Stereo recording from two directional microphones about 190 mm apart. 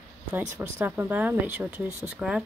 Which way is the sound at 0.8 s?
10° right (ahead or behind).